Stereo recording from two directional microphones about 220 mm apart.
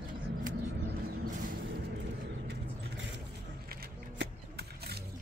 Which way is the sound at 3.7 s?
45° right (ahead or behind).